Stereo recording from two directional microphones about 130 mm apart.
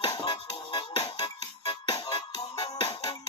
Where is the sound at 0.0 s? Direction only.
35° left (ahead or behind).